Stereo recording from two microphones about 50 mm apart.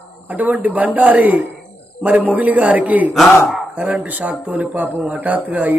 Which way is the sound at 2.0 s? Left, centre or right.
Right.